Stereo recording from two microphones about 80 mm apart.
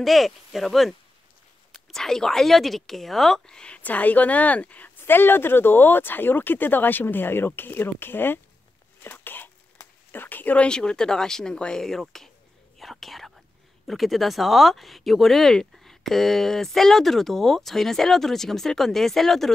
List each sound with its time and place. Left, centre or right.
0.0 s speech: centre
12.7 s whispering: centre
13.8 s speech: centre